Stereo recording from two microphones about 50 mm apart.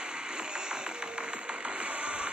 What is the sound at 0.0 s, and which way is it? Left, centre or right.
Music, centre.